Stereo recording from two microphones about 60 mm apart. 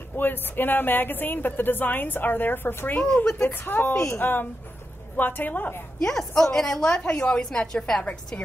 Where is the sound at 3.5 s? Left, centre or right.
Left.